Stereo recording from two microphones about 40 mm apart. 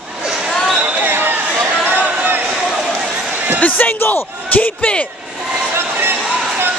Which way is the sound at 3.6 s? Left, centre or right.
Left.